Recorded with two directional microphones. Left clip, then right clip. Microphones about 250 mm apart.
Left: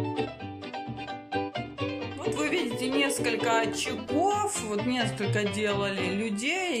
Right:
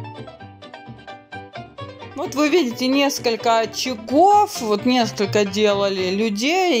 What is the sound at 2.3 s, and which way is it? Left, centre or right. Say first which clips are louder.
Speech: right 12 dB; centre.